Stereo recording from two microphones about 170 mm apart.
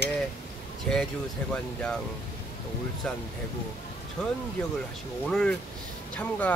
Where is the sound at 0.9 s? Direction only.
5° left (ahead or behind).